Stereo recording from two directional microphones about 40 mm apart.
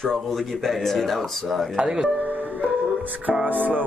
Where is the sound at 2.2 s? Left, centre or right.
Right.